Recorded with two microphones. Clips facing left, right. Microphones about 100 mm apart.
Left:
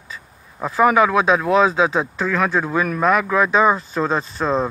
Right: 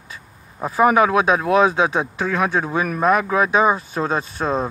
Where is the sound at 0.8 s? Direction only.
25° right (ahead or behind).